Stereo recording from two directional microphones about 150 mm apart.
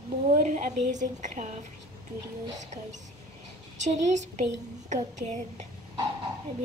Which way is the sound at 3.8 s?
50° right (ahead or behind).